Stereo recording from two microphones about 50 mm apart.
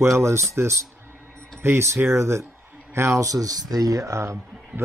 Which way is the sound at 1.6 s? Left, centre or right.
Right.